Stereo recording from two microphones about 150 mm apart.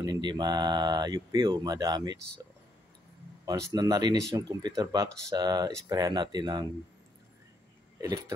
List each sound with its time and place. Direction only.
0.0 s speech: 30° right (ahead or behind)
3.4 s speech: 25° right (ahead or behind)